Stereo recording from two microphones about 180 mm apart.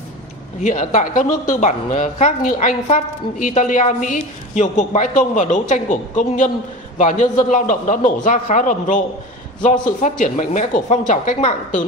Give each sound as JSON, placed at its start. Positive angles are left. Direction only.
{"t": 0.6, "sound": "a woman's voice", "side_deg": 40}